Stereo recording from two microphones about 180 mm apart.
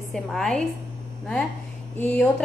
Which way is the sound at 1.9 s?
10° left (ahead or behind).